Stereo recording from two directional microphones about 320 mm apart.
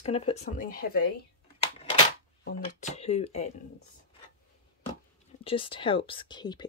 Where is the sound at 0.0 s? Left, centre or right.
Centre.